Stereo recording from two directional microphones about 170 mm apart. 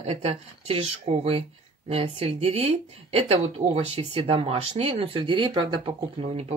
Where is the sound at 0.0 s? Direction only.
40° right (ahead or behind).